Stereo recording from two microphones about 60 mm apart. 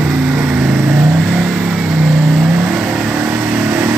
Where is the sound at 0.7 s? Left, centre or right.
Right.